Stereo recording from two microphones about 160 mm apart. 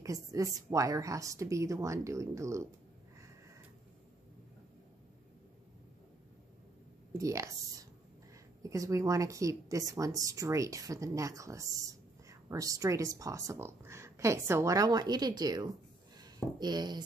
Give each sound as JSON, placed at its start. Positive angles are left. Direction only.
{"t": 0.0, "sound": "a woman's voice", "side_deg": -20}
{"t": 7.2, "sound": "a woman's voice", "side_deg": -20}
{"t": 8.6, "sound": "a woman's voice", "side_deg": -20}